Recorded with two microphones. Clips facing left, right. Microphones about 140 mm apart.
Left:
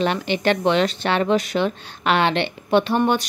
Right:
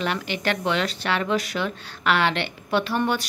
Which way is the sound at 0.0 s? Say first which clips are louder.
Left 6 dB; 25° left (ahead or behind).